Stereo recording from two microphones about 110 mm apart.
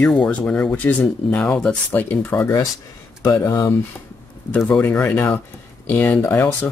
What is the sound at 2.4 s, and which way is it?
Speech, 30° left (ahead or behind).